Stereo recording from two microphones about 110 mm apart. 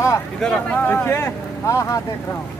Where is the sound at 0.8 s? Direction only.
20° left (ahead or behind).